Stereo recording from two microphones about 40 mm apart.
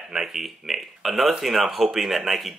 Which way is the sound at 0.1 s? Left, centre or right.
Centre.